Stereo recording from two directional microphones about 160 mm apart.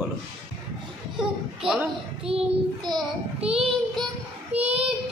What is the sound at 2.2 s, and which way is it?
Speech, 30° right (ahead or behind).